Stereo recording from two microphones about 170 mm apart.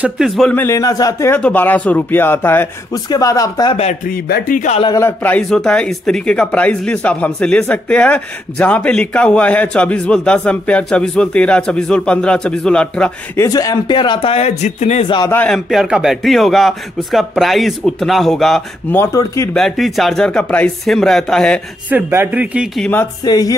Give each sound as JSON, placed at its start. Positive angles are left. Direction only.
{"t": 0.0, "sound": "speech", "side_deg": 0}
{"t": 0.7, "sound": "speech", "side_deg": 20}
{"t": 4.1, "sound": "speech", "side_deg": 55}
{"t": 4.8, "sound": "speech", "side_deg": 15}
{"t": 13.5, "sound": "speech", "side_deg": 20}
{"t": 15.2, "sound": "speech", "side_deg": 10}
{"t": 18.9, "sound": "speech", "side_deg": 15}
{"t": 19.5, "sound": "speech", "side_deg": 0}
{"t": 21.8, "sound": "speech", "side_deg": -10}
{"t": 22.8, "sound": "speech", "side_deg": 10}
{"t": 23.2, "sound": "speech", "side_deg": 25}